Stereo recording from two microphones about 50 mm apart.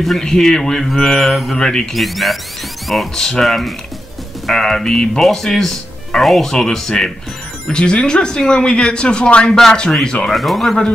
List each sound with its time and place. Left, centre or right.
0.2 s speech: centre
0.9 s mantra: centre
1.6 s speech: centre
2.0 s mantra: centre
3.2 s speech: centre
9.5 s speech: centre
10.3 s mantra: centre